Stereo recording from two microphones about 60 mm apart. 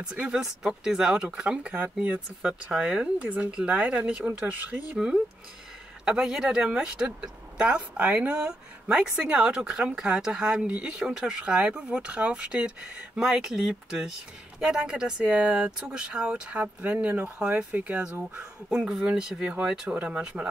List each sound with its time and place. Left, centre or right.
0.0 s speech: centre